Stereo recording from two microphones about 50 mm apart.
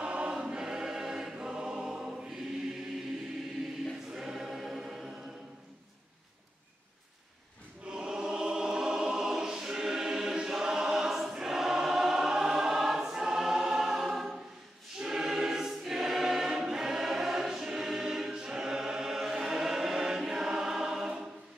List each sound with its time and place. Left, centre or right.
0.0 s choir: right
4.1 s choir: centre
7.8 s choir: centre